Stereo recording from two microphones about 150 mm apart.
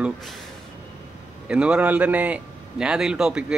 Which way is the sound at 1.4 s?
5° right (ahead or behind).